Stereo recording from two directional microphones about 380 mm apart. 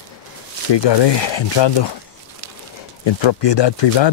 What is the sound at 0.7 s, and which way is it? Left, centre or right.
Speech, left.